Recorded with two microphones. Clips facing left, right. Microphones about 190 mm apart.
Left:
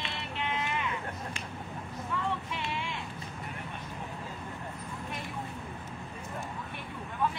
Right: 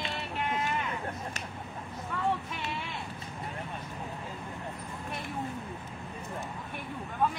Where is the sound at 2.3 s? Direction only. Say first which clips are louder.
Right 2 dB; 40° right (ahead or behind).